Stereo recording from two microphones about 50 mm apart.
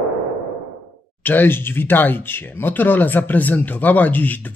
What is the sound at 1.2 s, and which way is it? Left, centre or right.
Speech, left.